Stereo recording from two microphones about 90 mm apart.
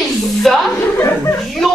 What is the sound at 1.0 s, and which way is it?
Speech, 30° left (ahead or behind).